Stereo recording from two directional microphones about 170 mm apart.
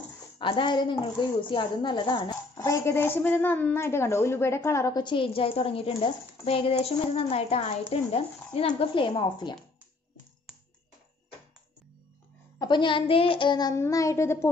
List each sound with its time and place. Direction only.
0.4 s a woman's voice: 30° left (ahead or behind)
12.5 s a woman's voice: 25° left (ahead or behind)